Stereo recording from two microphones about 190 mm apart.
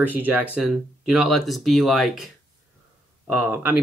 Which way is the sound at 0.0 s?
10° right (ahead or behind).